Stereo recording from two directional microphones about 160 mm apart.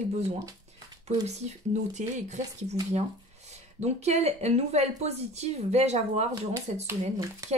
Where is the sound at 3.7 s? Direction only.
45° right (ahead or behind).